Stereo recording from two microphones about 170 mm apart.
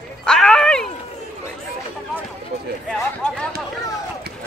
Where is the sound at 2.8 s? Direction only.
5° left (ahead or behind).